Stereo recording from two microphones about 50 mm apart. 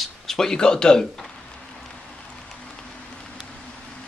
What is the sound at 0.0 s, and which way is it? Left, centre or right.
Speech, centre.